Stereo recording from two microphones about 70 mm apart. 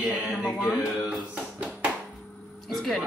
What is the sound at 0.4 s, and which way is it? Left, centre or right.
Speech, centre.